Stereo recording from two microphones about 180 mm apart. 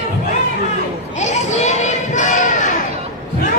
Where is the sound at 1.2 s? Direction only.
40° left (ahead or behind).